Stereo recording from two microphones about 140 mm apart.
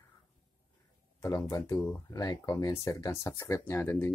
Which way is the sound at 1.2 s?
25° left (ahead or behind).